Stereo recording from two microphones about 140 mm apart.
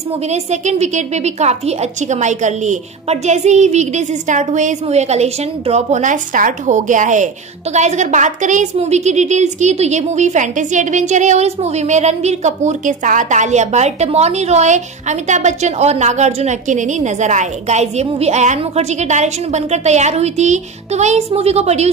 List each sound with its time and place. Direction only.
0.1 s a woman's voice: 55° right (ahead or behind)